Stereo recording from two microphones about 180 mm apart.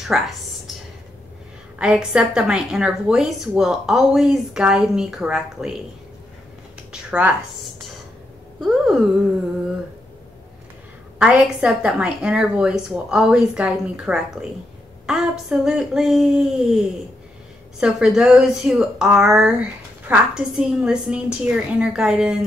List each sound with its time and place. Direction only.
0.1 s a woman's voice: 5° right (ahead or behind)
1.8 s a woman's voice: 5° right (ahead or behind)
6.9 s a sound: 5° right (ahead or behind)
11.1 s a woman's voice: 5° right (ahead or behind)